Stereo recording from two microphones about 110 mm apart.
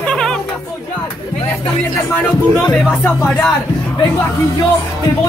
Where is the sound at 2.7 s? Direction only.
5° left (ahead or behind).